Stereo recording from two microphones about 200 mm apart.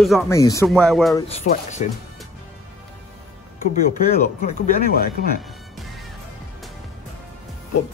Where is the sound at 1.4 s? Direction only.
35° left (ahead or behind).